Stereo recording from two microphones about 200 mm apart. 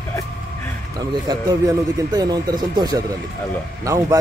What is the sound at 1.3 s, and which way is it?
A man's voice, 20° right (ahead or behind).